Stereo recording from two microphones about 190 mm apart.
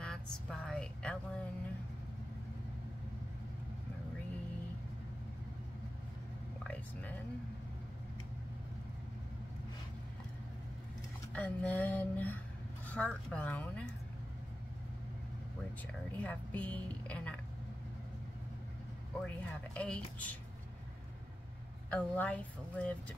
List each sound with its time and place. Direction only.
0.0 s a sound: 5° left (ahead or behind)
6.6 s a sound: 5° left (ahead or behind)
11.3 s music: 5° left (ahead or behind)
12.8 s a woman's voice: 5° left (ahead or behind)
15.9 s a woman's voice: 5° left (ahead or behind)
19.2 s a woman's voice: 5° left (ahead or behind)
21.9 s a woman's voice: 5° left (ahead or behind)